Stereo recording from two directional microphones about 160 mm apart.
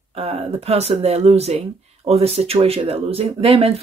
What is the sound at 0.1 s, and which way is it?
Speech, 35° right (ahead or behind).